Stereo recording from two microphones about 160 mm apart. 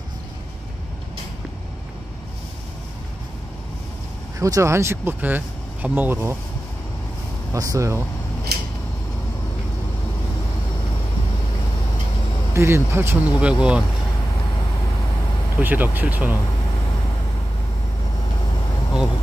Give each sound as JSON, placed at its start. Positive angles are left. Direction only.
{"t": 4.4, "sound": "speech", "side_deg": -20}
{"t": 7.5, "sound": "speech", "side_deg": -20}
{"t": 8.5, "sound": "a sound", "side_deg": -85}
{"t": 12.5, "sound": "speech", "side_deg": -15}
{"t": 15.5, "sound": "speech", "side_deg": -10}